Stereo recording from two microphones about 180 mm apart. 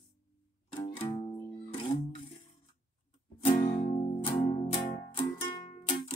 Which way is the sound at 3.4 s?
25° left (ahead or behind).